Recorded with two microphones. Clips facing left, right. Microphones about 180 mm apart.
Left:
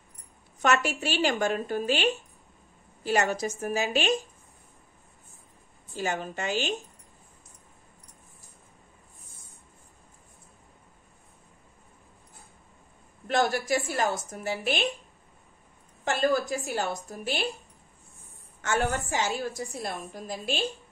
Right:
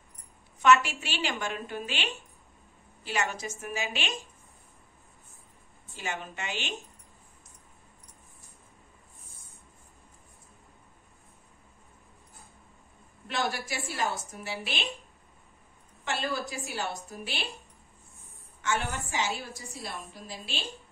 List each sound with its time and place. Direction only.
0.6 s a woman's voice: 40° left (ahead or behind)
5.9 s speech: 40° left (ahead or behind)
13.3 s a woman's voice: 45° left (ahead or behind)
16.0 s a woman's voice: 45° left (ahead or behind)
18.6 s a woman's voice: 40° left (ahead or behind)